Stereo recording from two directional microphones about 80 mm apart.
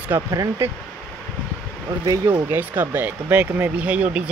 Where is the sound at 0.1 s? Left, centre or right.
Right.